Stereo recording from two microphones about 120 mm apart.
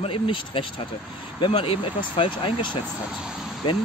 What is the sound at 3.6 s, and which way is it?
Speech, 40° left (ahead or behind).